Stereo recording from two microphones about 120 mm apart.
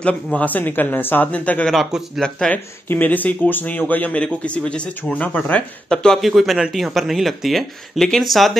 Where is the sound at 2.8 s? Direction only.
15° left (ahead or behind).